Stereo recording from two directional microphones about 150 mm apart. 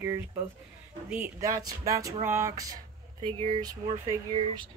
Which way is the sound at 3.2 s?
35° right (ahead or behind).